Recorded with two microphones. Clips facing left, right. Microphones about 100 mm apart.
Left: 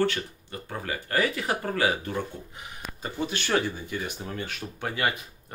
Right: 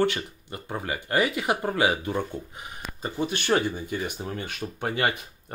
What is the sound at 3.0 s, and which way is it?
Speech, 25° right (ahead or behind).